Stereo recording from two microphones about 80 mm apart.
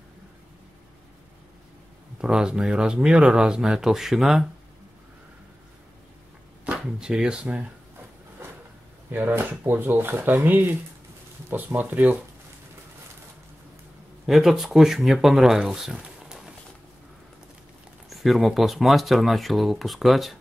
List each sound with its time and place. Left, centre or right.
2.1 s speech: centre
6.6 s speech: centre
9.1 s speech: right
14.2 s speech: centre
18.1 s speech: centre